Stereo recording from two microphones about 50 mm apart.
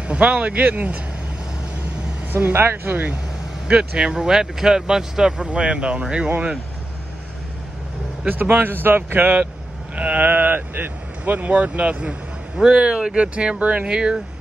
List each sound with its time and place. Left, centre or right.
0.0 s speech: right
2.3 s speech: right
3.6 s speech: centre
8.3 s speech: right
9.9 s speech: right
10.3 s speech: right
13.8 s speech: centre